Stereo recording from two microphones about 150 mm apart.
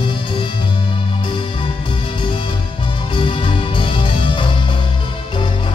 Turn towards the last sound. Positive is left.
turn(degrees=35)  # may be behind; listen again after turning